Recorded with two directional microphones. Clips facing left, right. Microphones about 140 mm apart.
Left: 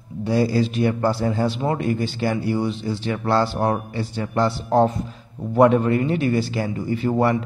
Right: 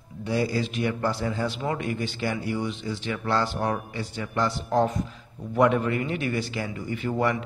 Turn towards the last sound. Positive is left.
turn(degrees=35)  # may be behind; listen again after turning